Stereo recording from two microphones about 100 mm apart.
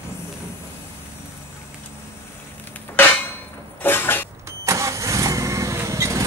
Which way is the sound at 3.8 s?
20° left (ahead or behind).